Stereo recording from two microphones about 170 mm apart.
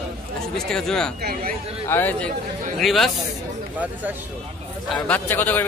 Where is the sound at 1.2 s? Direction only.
65° right (ahead or behind).